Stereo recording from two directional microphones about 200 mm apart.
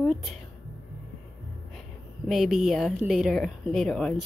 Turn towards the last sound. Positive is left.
turn(degrees=0)  # may be behind; listen again after turning